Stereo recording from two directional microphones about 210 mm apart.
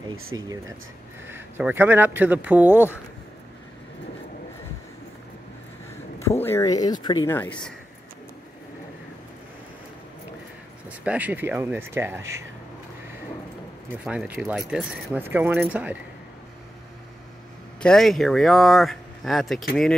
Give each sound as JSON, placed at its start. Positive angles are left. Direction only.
{"t": 0.1, "sound": "speech", "side_deg": -80}
{"t": 1.3, "sound": "speech", "side_deg": -10}
{"t": 6.4, "sound": "speech", "side_deg": 15}
{"t": 10.9, "sound": "speech", "side_deg": -5}
{"t": 14.0, "sound": "speech", "side_deg": -5}
{"t": 17.8, "sound": "speech", "side_deg": 0}